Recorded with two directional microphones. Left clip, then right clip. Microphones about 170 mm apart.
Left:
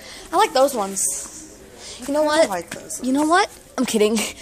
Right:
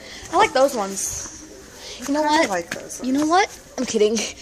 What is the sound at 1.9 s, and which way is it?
Speech, 30° left (ahead or behind).